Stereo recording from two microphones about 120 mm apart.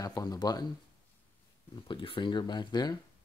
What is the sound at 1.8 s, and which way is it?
Speech, 45° left (ahead or behind).